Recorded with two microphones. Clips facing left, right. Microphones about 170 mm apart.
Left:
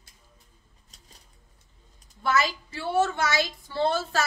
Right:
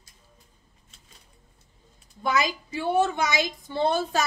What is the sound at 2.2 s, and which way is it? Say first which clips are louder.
A woman's voice: even; 15° right (ahead or behind).